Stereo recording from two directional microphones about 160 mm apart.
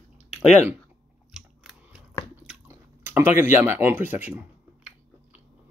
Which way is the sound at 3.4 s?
15° right (ahead or behind).